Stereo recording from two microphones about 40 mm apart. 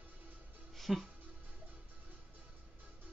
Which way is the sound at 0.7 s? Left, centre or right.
Centre.